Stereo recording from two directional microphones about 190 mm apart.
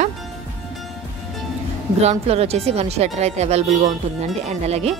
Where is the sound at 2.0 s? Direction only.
35° right (ahead or behind).